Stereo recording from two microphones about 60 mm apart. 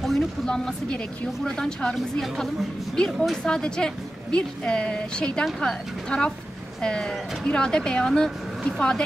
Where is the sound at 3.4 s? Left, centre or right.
Centre.